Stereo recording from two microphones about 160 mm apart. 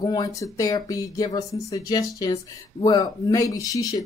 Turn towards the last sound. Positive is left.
turn(degrees=20)  # may be behind; listen again after turning